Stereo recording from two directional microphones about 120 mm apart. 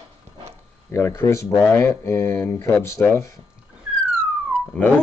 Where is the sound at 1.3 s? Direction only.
20° left (ahead or behind).